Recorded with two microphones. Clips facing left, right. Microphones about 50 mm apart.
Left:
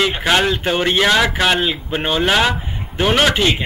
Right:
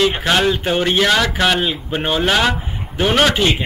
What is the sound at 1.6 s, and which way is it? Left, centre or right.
Speech, centre.